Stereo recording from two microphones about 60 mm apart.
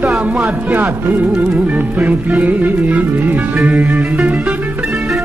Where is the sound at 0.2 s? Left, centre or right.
Right.